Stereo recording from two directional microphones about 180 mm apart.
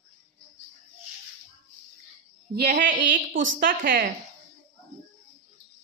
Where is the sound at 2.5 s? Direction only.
50° right (ahead or behind).